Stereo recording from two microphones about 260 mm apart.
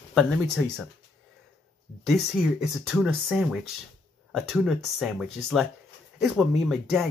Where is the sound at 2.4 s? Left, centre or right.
Centre.